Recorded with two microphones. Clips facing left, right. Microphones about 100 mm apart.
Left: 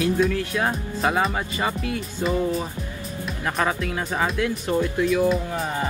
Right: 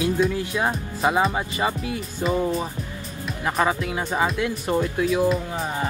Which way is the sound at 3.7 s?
15° right (ahead or behind).